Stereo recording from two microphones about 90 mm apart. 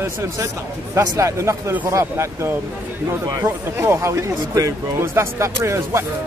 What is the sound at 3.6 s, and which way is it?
Speech, 30° right (ahead or behind).